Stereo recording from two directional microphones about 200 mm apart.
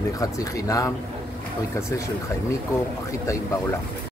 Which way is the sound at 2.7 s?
15° left (ahead or behind).